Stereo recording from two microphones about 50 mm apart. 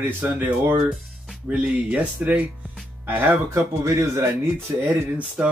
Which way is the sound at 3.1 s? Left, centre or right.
Right.